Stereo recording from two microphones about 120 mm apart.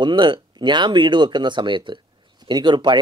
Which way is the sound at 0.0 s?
40° right (ahead or behind).